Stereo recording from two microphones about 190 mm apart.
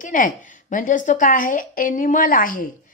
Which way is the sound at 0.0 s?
45° left (ahead or behind).